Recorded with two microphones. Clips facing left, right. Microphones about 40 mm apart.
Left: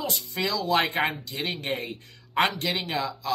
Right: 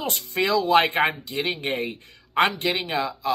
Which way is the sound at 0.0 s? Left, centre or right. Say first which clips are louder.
Right 4 dB; right.